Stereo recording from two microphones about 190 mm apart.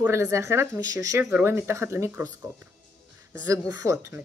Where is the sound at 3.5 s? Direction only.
15° right (ahead or behind).